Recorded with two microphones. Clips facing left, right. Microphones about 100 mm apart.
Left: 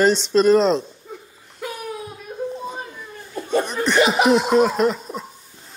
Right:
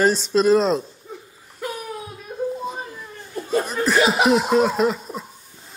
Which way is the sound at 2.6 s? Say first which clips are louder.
Right 1 dB; centre (ahead or behind).